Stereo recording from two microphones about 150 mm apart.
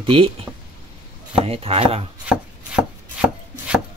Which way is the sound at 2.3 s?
5° right (ahead or behind).